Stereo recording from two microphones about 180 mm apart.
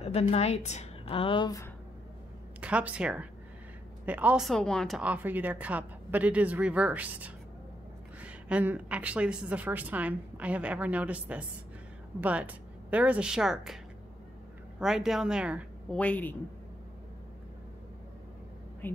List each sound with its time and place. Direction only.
0.0 s a woman's voice: 35° left (ahead or behind)
2.6 s a woman's voice: 5° right (ahead or behind)
14.8 s a woman's voice: centre (ahead or behind)
15.9 s a woman's voice: 10° left (ahead or behind)